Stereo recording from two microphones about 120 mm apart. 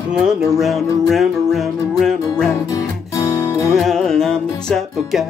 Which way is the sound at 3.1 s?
30° left (ahead or behind).